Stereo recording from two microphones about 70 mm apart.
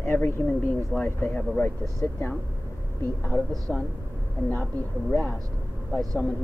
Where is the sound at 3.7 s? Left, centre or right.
Centre.